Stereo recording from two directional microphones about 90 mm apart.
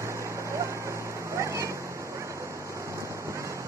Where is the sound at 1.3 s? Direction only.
35° right (ahead or behind).